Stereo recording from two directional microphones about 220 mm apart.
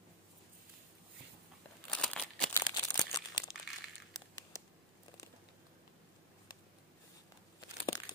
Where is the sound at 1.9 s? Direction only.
5° left (ahead or behind).